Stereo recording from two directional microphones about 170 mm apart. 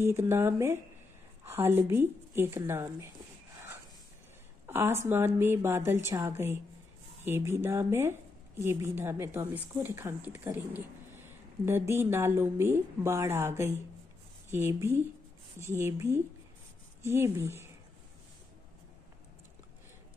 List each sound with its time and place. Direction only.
0.0 s speech: 15° right (ahead or behind)
4.6 s speech: 15° right (ahead or behind)